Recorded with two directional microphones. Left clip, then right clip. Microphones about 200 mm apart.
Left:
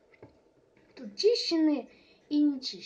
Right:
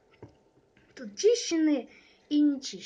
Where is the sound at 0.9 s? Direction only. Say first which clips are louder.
Right 1 dB; 5° left (ahead or behind).